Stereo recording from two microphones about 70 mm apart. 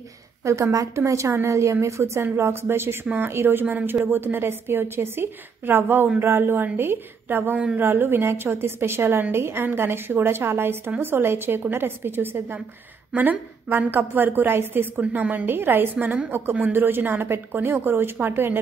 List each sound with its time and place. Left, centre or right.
0.4 s a woman's voice: right